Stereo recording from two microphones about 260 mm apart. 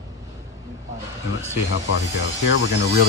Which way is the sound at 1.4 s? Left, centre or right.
Left.